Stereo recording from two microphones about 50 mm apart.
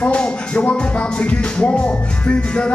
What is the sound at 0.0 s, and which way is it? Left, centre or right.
Music, left.